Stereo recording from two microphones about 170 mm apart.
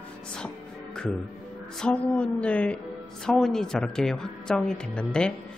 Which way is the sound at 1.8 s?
5° left (ahead or behind).